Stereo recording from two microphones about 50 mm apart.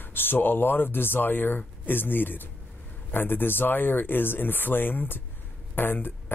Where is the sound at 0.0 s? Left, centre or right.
Left.